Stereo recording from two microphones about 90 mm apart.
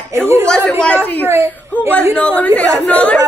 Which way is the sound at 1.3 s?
30° right (ahead or behind).